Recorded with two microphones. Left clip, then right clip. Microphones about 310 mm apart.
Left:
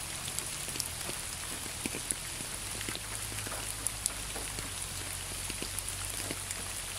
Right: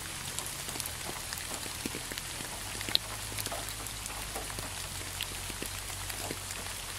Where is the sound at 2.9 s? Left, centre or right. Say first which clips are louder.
Right 11 dB; right.